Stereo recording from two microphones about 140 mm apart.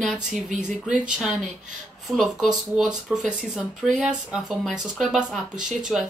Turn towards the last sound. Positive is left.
turn(degrees=-5)  # may be behind; listen again after turning